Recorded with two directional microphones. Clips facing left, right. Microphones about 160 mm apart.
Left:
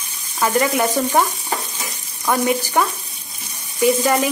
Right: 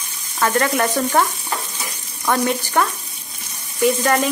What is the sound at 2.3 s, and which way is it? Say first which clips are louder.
A woman's voice: left 1 dB; 10° left (ahead or behind).